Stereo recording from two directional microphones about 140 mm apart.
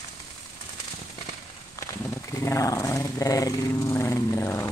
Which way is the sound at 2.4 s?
20° left (ahead or behind).